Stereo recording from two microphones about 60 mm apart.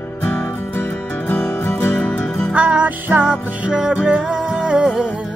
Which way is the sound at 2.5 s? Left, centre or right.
Right.